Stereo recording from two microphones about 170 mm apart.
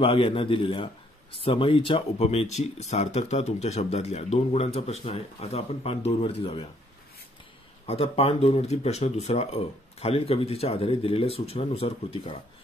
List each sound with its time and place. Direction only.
0.0 s speech: 35° left (ahead or behind)
7.8 s speech: 35° left (ahead or behind)